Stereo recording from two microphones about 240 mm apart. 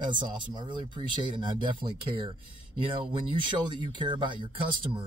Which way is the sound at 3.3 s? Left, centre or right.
Centre.